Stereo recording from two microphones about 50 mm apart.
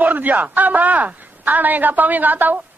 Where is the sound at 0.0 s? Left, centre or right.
Right.